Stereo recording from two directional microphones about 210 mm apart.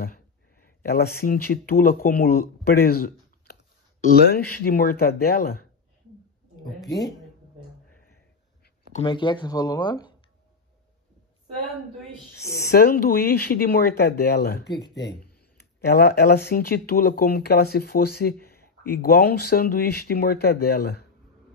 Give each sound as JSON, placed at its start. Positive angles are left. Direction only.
{"t": 0.7, "sound": "speech", "side_deg": 50}
{"t": 4.6, "sound": "speech", "side_deg": 45}
{"t": 6.9, "sound": "speech", "side_deg": 15}
{"t": 8.9, "sound": "speech", "side_deg": 25}
{"t": 12.4, "sound": "speech", "side_deg": 50}
{"t": 15.8, "sound": "speech", "side_deg": 50}